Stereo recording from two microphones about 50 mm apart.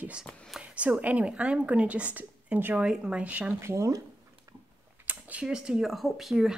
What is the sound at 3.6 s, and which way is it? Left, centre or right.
Speech, right.